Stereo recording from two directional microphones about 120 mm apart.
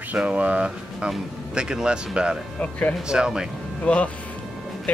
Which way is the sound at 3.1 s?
5° right (ahead or behind).